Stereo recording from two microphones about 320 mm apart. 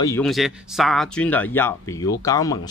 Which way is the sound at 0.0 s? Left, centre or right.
Centre.